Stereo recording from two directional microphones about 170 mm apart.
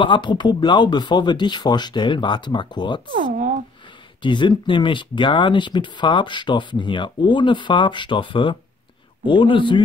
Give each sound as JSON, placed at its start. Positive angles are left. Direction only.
{"t": 0.0, "sound": "speech", "side_deg": 30}
{"t": 3.2, "sound": "a sound", "side_deg": -50}
{"t": 4.2, "sound": "speech", "side_deg": 30}